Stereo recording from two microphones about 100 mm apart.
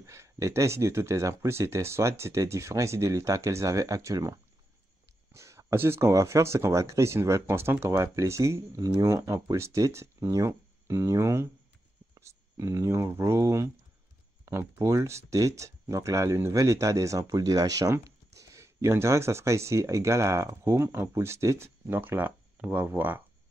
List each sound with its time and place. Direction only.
0.0 s speech: 30° right (ahead or behind)